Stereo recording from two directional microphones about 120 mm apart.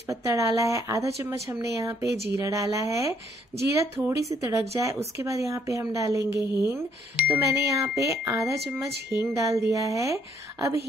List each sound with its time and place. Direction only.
0.0 s speech: 25° right (ahead or behind)